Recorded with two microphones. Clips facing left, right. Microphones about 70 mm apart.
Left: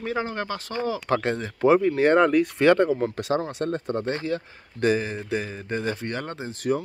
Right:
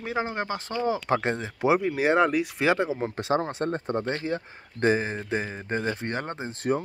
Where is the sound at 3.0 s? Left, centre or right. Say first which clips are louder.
Left 1 dB; right.